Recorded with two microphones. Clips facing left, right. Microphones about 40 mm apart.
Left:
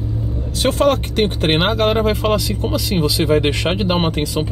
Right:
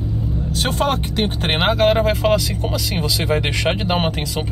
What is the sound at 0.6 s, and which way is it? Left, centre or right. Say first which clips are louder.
Speech: left 5 dB; centre.